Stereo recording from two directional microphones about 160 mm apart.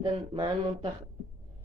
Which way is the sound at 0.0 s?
30° right (ahead or behind).